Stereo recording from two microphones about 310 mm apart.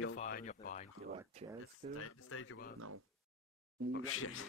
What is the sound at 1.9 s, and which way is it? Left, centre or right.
Speech, left.